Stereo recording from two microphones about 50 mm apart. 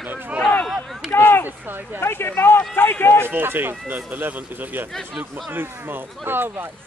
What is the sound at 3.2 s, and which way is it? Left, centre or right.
Speech, right.